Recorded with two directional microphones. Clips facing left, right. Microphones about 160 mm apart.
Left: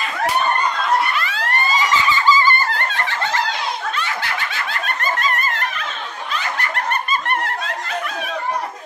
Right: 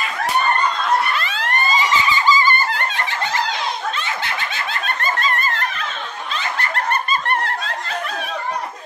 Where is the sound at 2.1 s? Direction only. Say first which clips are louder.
Left 2 dB; 15° right (ahead or behind).